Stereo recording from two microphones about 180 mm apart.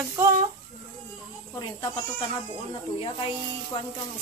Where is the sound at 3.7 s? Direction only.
25° left (ahead or behind).